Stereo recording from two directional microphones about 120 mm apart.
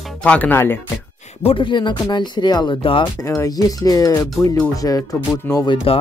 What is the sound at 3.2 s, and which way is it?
Speech, 25° left (ahead or behind).